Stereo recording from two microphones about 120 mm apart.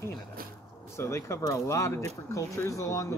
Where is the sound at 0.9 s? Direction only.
25° left (ahead or behind).